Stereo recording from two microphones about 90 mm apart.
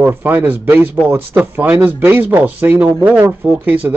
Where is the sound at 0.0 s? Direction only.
25° right (ahead or behind).